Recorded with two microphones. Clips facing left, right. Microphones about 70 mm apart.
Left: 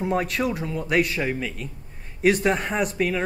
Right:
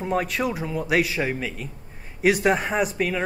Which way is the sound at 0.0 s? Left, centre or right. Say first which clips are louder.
Even; centre.